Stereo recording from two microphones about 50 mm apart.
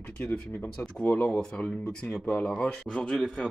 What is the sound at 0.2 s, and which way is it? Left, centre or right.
Speech, left.